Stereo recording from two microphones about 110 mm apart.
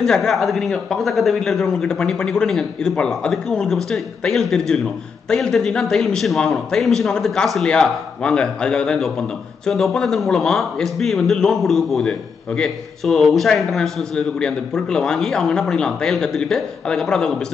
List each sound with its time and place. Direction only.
0.0 s a man's voice: centre (ahead or behind)